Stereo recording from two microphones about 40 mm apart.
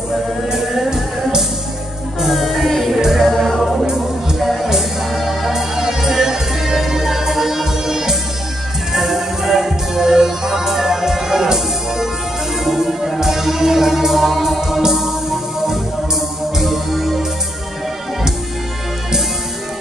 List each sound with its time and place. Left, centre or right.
0.5 s music: centre